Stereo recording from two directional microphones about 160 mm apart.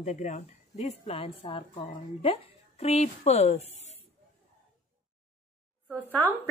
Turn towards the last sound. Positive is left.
turn(degrees=10)  # may be behind; listen again after turning